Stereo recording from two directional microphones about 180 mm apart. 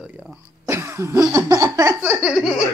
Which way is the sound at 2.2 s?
Centre (ahead or behind).